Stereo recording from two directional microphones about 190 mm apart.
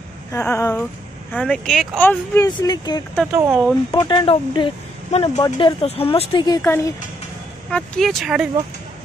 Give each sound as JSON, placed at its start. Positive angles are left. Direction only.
{"t": 0.3, "sound": "speech", "side_deg": 15}
{"t": 3.3, "sound": "speech", "side_deg": -10}
{"t": 3.9, "sound": "speech", "side_deg": 20}
{"t": 7.7, "sound": "speech", "side_deg": 5}